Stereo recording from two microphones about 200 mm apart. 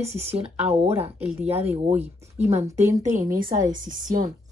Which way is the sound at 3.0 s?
40° right (ahead or behind).